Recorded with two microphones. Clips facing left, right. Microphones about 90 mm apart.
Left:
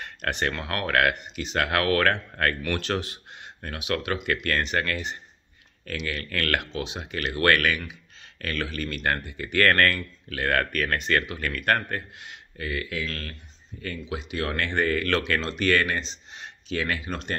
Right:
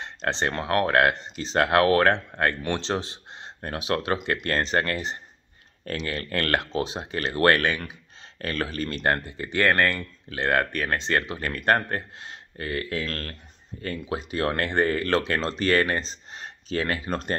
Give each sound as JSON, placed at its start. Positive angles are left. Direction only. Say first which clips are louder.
{"t": 0.0, "sound": "speech", "louder": "right 1 dB", "side_deg": -25}